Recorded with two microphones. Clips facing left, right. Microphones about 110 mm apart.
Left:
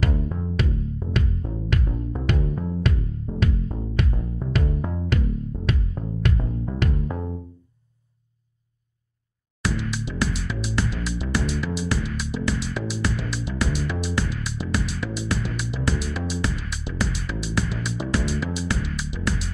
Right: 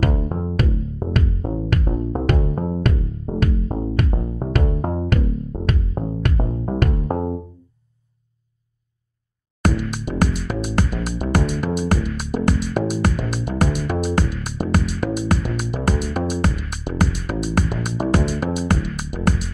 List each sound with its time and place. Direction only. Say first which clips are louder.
0.0 s music: right 4 dB; 45° right (ahead or behind)
9.6 s music: right 5 dB; 50° right (ahead or behind)